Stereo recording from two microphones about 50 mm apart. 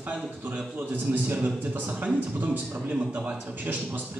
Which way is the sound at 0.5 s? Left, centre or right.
Right.